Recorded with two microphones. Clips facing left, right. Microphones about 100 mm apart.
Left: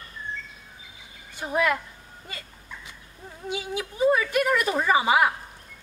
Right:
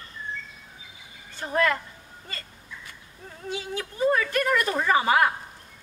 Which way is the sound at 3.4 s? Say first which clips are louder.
Left 1 dB; 15° left (ahead or behind).